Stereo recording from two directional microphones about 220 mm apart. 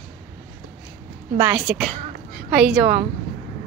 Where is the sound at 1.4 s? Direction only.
10° right (ahead or behind).